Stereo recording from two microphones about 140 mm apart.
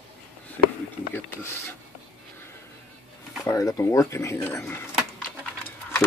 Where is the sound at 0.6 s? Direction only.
10° left (ahead or behind).